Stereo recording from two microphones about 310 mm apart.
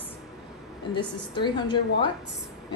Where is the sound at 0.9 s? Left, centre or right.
Centre.